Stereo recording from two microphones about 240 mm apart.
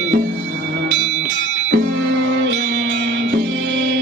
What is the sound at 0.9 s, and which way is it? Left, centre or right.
Music, right.